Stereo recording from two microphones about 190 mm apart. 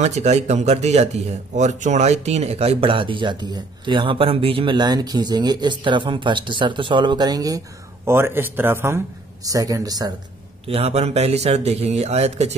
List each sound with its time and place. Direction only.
0.0 s a man's voice: 35° right (ahead or behind); by 10.1 s 20° right (ahead or behind)
10.7 s speech: 35° right (ahead or behind)